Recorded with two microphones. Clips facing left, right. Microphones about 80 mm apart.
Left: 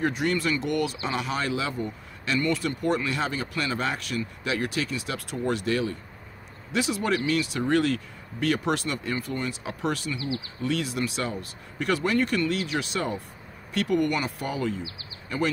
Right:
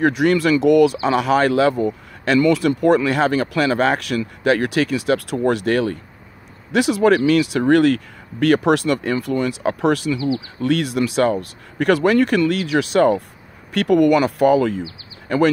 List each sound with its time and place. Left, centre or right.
0.0 s speech: right